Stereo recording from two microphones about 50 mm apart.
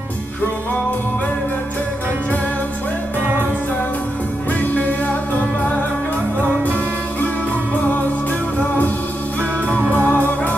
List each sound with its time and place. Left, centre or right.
4.5 s music: left
8.5 s music: left
10.0 s music: left